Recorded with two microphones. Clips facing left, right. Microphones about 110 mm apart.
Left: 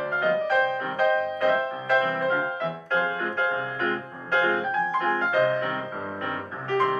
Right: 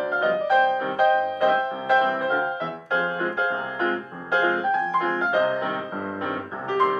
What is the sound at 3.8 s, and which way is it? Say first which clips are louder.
Music: right 2 dB; 15° right (ahead or behind).